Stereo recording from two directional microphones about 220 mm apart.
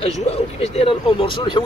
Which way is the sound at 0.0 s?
25° left (ahead or behind).